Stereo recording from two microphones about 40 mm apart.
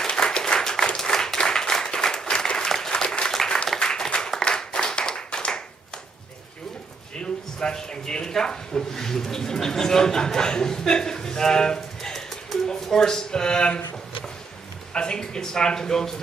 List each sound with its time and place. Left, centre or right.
0.0 s applause: left
4.5 s clapping: centre
7.6 s speech: centre
15.0 s speech: centre